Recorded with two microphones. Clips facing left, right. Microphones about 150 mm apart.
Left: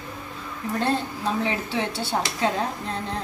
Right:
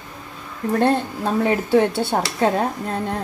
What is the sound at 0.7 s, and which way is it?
Speech, 50° right (ahead or behind).